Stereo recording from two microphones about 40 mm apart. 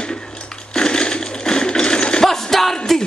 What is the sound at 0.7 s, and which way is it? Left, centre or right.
Ratchet, left.